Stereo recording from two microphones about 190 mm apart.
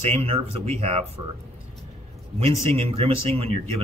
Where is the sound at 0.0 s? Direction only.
35° right (ahead or behind).